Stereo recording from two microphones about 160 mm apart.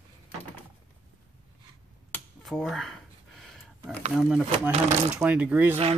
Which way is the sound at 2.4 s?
Centre (ahead or behind).